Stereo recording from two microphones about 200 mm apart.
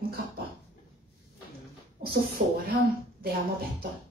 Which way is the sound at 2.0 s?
30° right (ahead or behind).